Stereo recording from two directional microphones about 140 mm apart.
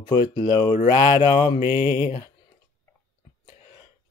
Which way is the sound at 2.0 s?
45° left (ahead or behind).